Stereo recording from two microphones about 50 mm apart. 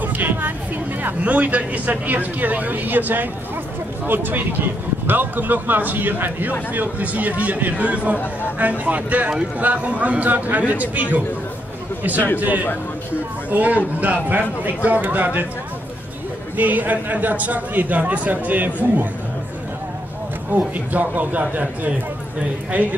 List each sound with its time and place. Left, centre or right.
0.0 s a sound: right
1.2 s speech: right
16.5 s speech: right
20.5 s speech: right